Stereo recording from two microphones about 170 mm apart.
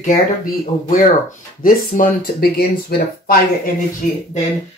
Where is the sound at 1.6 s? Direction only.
60° left (ahead or behind).